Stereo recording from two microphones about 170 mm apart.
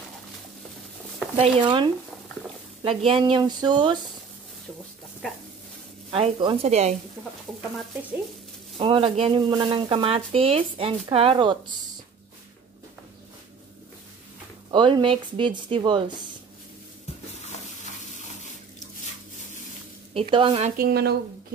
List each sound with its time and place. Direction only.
1.3 s speech: 30° right (ahead or behind)
6.0 s speech: 30° right (ahead or behind)
8.7 s speech: 30° right (ahead or behind)
14.7 s speech: 30° right (ahead or behind)
20.2 s speech: 30° right (ahead or behind)
20.7 s a woman's voice: 65° right (ahead or behind)